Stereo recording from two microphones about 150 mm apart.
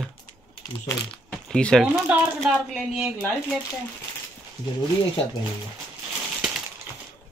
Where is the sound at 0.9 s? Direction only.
20° left (ahead or behind).